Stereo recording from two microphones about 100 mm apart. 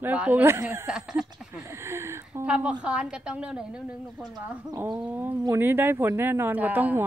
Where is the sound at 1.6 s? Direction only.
30° right (ahead or behind).